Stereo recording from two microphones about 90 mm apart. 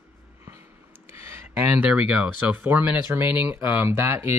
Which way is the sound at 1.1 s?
25° right (ahead or behind).